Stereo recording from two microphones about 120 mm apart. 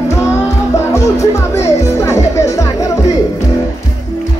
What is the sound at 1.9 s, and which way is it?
Music, 25° left (ahead or behind).